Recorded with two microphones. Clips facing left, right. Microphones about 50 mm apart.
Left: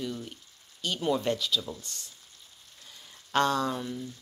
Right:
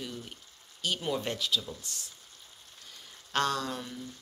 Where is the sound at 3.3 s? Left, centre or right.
Centre.